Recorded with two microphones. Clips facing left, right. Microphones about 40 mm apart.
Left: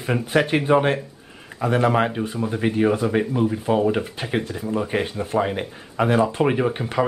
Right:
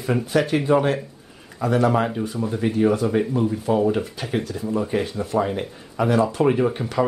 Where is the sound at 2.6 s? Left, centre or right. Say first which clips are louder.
Even; left.